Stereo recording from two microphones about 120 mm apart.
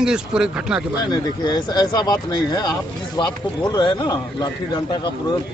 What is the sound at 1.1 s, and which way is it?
Speech, 35° left (ahead or behind).